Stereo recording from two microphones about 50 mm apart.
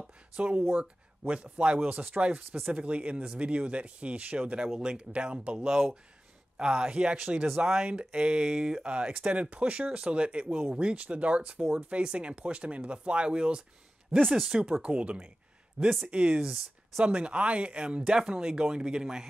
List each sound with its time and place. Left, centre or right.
0.4 s speech: right
16.3 s speech: centre
17.0 s speech: right